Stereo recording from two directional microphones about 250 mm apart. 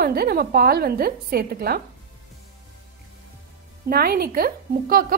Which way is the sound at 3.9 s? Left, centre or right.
Right.